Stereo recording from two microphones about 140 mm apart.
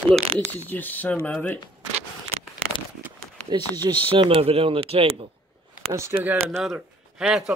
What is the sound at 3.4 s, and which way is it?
Speech, 30° right (ahead or behind).